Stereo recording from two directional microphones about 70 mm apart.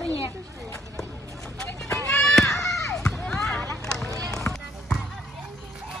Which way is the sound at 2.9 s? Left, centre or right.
Centre.